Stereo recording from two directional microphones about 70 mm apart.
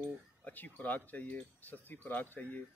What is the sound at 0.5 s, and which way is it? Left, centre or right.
Speech, left.